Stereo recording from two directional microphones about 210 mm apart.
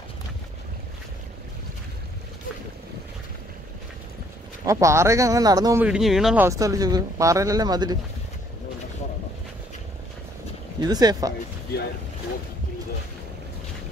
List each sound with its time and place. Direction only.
4.6 s speech: 15° right (ahead or behind)
5.9 s speech: centre (ahead or behind); by 8.0 s 20° right (ahead or behind)
10.8 s speech: 20° right (ahead or behind)